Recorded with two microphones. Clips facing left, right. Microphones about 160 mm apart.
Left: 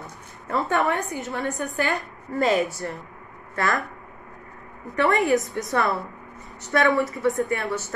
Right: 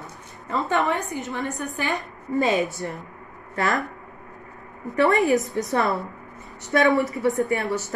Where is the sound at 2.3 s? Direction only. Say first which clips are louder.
Even; 20° right (ahead or behind).